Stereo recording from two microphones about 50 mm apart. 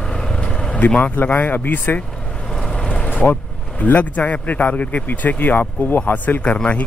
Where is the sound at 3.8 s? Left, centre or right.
Left.